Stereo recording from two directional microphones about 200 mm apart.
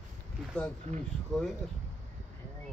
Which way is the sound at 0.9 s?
35° right (ahead or behind).